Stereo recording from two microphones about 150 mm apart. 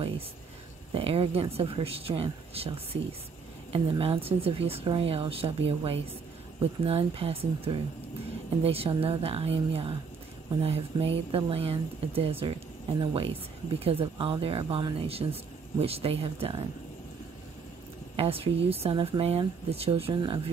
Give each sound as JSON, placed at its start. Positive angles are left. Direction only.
{"t": 0.9, "sound": "speech", "side_deg": -40}
{"t": 4.0, "sound": "speech", "side_deg": -40}
{"t": 18.1, "sound": "speech", "side_deg": -40}